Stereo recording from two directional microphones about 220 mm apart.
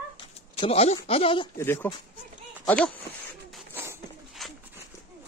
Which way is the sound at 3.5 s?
10° right (ahead or behind).